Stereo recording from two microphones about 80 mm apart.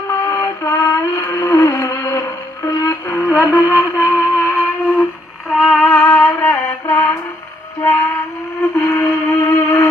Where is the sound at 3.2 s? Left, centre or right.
Centre.